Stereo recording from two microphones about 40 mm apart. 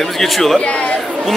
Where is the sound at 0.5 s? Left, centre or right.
Left.